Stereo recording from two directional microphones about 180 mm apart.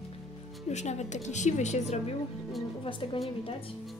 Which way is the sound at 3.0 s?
30° left (ahead or behind).